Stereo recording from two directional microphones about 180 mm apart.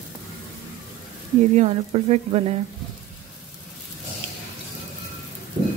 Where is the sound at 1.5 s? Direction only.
35° right (ahead or behind).